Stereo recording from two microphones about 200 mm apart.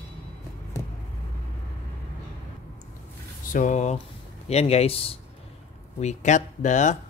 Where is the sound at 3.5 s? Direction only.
40° left (ahead or behind).